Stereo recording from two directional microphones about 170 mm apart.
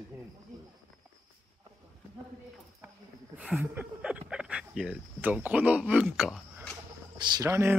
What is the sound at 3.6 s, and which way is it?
Cricket, 10° right (ahead or behind).